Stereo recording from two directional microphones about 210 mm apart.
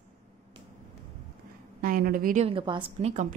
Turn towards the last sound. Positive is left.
turn(degrees=-35)  # may be behind; listen again after turning